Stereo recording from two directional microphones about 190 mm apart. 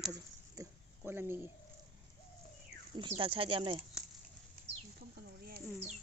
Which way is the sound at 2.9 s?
25° right (ahead or behind).